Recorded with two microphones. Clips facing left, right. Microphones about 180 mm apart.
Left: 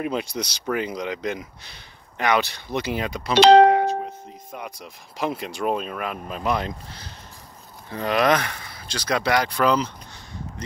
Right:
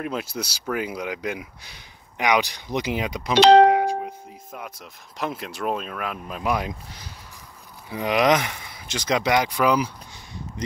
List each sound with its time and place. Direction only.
0.0 s speech: 5° right (ahead or behind)
3.6 s doorbell: 10° right (ahead or behind)
4.5 s speech: centre (ahead or behind)